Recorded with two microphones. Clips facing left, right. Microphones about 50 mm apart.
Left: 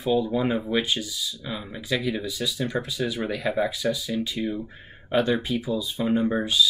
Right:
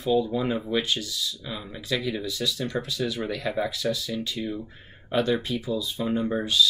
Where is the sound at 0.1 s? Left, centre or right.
Centre.